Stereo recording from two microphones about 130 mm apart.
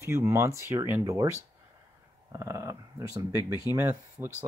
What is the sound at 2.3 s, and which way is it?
Speech, 25° right (ahead or behind).